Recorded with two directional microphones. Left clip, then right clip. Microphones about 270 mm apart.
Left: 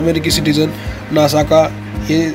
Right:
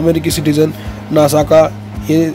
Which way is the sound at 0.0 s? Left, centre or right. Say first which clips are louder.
Right 1 dB; centre.